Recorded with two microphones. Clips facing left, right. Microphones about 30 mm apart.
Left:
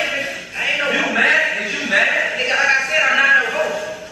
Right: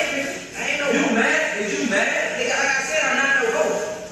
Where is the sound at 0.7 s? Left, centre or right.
Left.